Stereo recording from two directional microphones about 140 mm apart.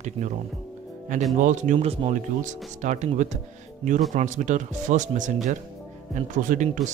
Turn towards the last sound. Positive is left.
turn(degrees=-60)  # may be behind; listen again after turning